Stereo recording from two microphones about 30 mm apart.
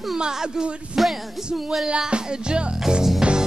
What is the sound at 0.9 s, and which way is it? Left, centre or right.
Music, centre.